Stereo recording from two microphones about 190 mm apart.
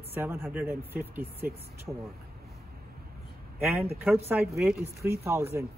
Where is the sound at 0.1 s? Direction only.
10° right (ahead or behind).